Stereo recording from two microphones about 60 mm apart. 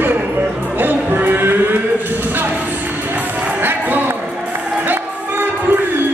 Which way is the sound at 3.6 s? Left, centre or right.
Right.